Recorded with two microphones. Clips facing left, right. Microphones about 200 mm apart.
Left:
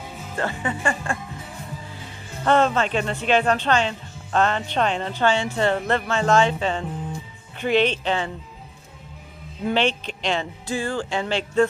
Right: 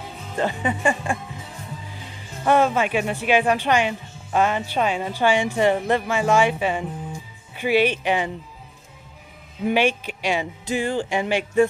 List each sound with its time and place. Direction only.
0.4 s speech: 15° right (ahead or behind)
2.4 s speech: 10° right (ahead or behind)
9.7 s speech: 10° right (ahead or behind)